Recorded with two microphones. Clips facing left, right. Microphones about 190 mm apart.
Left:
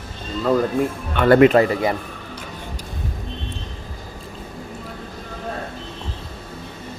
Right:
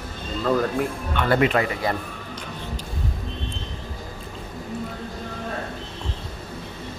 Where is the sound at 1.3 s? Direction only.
60° left (ahead or behind).